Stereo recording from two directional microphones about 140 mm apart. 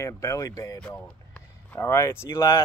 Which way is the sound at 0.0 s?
20° left (ahead or behind).